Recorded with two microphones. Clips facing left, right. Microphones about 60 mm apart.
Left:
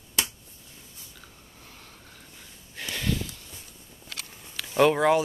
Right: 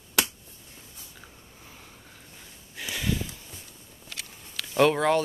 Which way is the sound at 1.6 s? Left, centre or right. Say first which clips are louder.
Even; centre.